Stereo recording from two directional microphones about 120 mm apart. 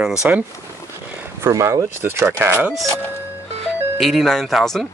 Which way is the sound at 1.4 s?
25° right (ahead or behind).